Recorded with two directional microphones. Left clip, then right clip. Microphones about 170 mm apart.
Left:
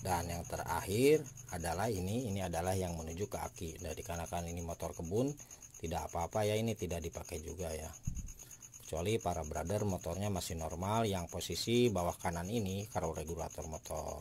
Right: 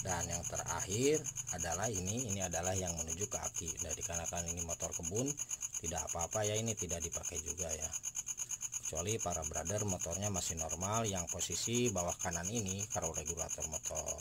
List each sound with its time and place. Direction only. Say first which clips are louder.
0.7 s speech: left 5 dB; 30° left (ahead or behind)
5.9 s speech: left 3 dB; 30° left (ahead or behind)
8.9 s speech: left 4 dB; 30° left (ahead or behind)